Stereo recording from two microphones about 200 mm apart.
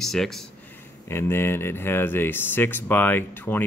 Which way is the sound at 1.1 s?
10° left (ahead or behind).